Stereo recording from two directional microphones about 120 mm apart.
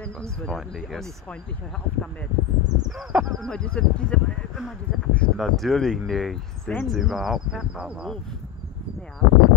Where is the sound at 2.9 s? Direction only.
5° right (ahead or behind).